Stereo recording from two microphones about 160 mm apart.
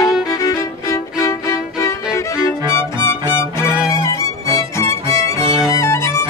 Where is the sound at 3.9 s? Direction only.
20° left (ahead or behind).